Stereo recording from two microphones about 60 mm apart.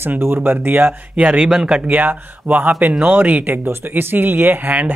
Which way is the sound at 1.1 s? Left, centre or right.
Centre.